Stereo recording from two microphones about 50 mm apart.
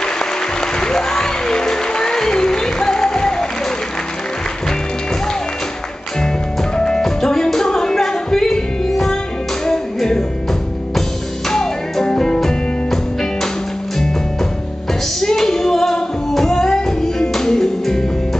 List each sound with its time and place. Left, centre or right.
0.7 s music: centre
6.8 s music: centre
15.1 s music: centre